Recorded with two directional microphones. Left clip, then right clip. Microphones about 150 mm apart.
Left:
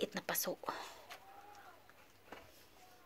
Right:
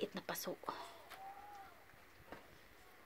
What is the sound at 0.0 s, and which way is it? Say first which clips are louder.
Speech: left 4 dB; 5° left (ahead or behind).